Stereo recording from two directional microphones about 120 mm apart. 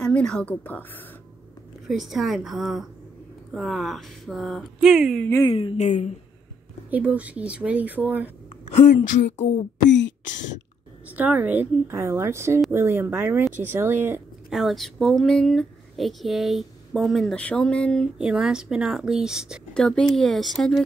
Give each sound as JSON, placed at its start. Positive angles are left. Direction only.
{"t": 0.0, "sound": "a woman's voice", "side_deg": 5}
{"t": 1.9, "sound": "speech", "side_deg": -5}
{"t": 5.5, "sound": "a woman's voice", "side_deg": 50}
{"t": 6.9, "sound": "speech", "side_deg": -15}
{"t": 8.7, "sound": "speech", "side_deg": 90}
{"t": 11.1, "sound": "speech", "side_deg": -15}
{"t": 14.5, "sound": "speech", "side_deg": 0}
{"t": 18.1, "sound": "speech", "side_deg": -5}
{"t": 19.7, "sound": "speech", "side_deg": 10}